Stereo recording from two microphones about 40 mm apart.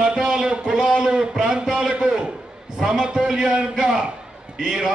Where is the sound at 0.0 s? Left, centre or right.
Right.